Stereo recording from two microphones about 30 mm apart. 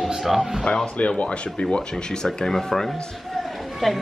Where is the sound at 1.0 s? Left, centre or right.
Left.